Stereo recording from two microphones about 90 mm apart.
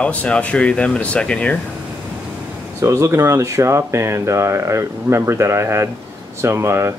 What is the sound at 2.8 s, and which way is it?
Speech, 35° right (ahead or behind).